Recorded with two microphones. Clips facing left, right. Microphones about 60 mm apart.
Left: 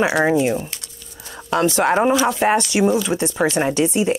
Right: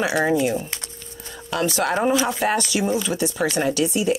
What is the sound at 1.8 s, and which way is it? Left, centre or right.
Speech, left.